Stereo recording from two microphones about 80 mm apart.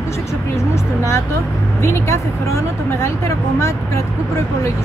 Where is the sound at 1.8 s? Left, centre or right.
Left.